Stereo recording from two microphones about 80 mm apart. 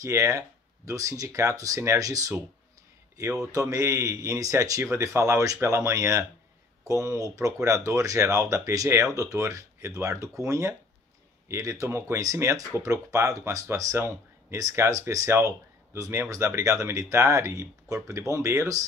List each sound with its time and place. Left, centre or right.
0.0 s speech: right
13.9 s speech: right